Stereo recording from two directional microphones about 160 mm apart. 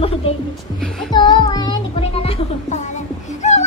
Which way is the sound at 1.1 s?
30° left (ahead or behind).